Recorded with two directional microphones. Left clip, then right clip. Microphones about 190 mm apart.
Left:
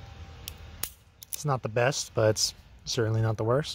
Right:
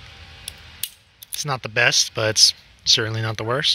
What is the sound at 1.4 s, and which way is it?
Speech, 15° left (ahead or behind).